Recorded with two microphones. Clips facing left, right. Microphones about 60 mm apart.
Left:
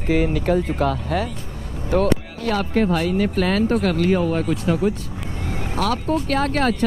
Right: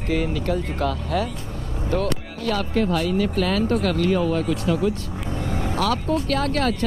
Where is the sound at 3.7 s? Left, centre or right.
Centre.